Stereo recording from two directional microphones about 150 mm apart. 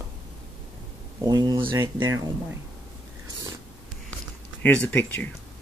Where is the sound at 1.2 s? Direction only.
25° right (ahead or behind).